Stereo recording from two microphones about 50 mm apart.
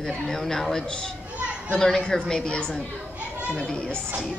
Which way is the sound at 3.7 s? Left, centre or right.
Centre.